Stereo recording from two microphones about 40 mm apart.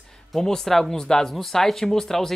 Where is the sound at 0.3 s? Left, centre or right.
Centre.